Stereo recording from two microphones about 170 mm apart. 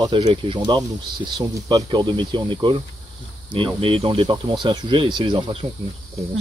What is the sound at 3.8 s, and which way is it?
Speech, 30° right (ahead or behind).